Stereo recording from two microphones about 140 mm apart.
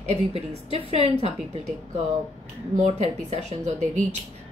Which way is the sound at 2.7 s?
55° right (ahead or behind).